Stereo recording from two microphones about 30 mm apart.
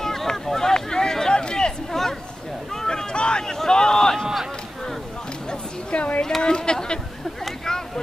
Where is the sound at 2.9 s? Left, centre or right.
Left.